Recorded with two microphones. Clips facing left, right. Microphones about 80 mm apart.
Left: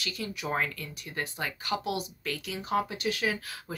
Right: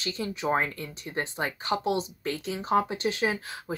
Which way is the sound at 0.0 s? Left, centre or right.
Right.